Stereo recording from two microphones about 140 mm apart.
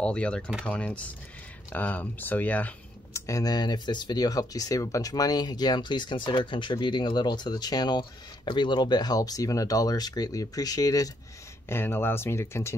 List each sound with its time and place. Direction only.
0.0 s speech: 10° left (ahead or behind)